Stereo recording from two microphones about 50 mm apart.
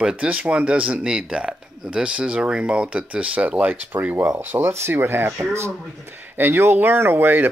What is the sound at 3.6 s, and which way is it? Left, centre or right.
Speech, right.